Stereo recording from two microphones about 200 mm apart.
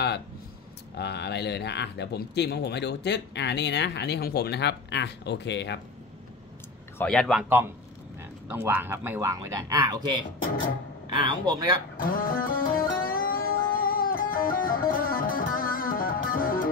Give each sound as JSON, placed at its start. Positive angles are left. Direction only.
{"t": 0.9, "sound": "speech", "side_deg": 55}
{"t": 7.0, "sound": "a man's voice", "side_deg": 5}
{"t": 12.1, "sound": "music", "side_deg": 45}